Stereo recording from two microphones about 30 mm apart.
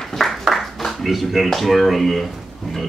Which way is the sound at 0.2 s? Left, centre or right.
Centre.